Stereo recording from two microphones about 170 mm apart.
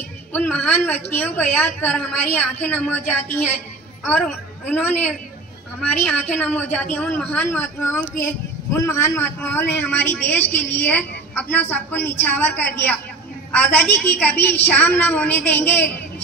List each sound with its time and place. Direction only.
0.3 s a man's voice: 5° left (ahead or behind)
4.0 s a woman's voice: 5° left (ahead or behind)